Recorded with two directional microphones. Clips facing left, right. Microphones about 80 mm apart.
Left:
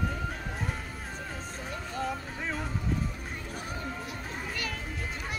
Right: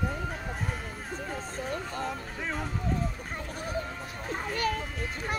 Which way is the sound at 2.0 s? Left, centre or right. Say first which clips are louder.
Left 1 dB; centre.